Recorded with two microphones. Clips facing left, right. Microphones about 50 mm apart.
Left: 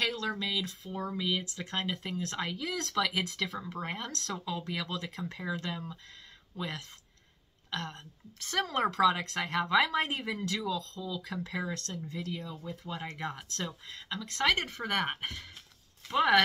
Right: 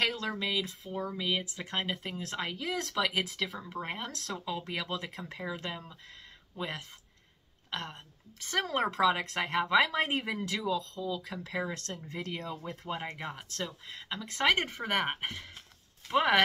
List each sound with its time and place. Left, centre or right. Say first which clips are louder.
0.0 s a sound: right 1 dB; right
0.3 s speech: right 1 dB; centre
8.9 s speech: left 1 dB; centre
11.2 s speech: even; centre
12.1 s speech: right 3 dB; right
12.9 s speech: right 3 dB; right
13.2 s speech: left 1 dB; centre
13.9 s speech: even; centre